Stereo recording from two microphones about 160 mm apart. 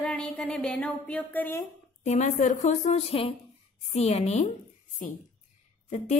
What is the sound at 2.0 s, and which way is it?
A woman's voice, 50° left (ahead or behind).